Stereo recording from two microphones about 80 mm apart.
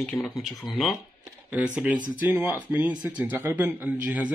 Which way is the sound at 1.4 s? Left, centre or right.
Centre.